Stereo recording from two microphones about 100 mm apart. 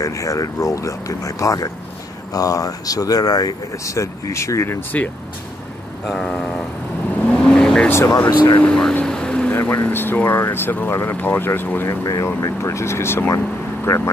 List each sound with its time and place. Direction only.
0.0 s speech: 30° left (ahead or behind)
6.0 s vehicle: 5° left (ahead or behind)
7.9 s speech: 25° left (ahead or behind)
8.5 s vehicle: 10° left (ahead or behind)
9.5 s speech: 20° left (ahead or behind)
12.0 s speech: 35° left (ahead or behind)